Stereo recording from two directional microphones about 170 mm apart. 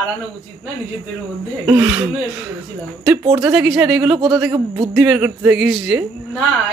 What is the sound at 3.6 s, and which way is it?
Speech, 5° right (ahead or behind).